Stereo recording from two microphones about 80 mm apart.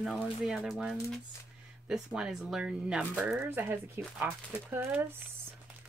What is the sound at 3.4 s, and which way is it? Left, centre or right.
Speech, right.